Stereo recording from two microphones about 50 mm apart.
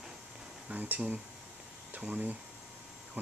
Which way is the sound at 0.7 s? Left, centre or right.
Right.